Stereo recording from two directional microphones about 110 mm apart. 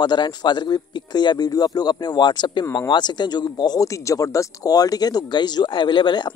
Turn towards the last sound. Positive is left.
turn(degrees=45)  # may be behind; listen again after turning